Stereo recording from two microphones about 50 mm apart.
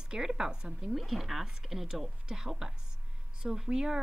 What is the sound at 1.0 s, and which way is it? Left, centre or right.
Speech, centre.